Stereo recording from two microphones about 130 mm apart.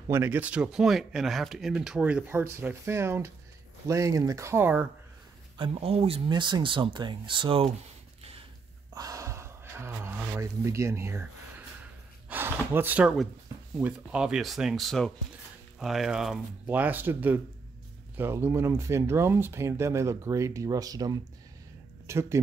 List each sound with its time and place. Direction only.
0.1 s speech: 15° right (ahead or behind)
5.6 s speech: 50° right (ahead or behind)
8.2 s a sound: 50° right (ahead or behind)
8.9 s gasp: 25° right (ahead or behind)
12.3 s a sound: 15° right (ahead or behind)
13.7 s speech: 10° right (ahead or behind)
16.6 s speech: 15° right (ahead or behind)